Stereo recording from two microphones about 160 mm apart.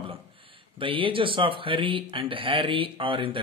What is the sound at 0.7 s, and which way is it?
Speech, 35° right (ahead or behind).